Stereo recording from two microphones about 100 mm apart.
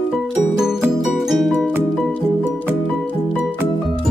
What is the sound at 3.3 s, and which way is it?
Music, 5° right (ahead or behind).